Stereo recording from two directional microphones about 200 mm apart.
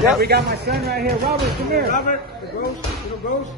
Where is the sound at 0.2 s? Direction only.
50° right (ahead or behind).